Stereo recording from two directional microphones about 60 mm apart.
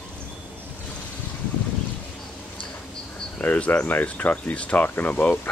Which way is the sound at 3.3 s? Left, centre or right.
Left.